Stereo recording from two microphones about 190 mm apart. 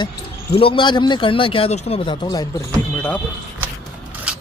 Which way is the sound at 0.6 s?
25° left (ahead or behind).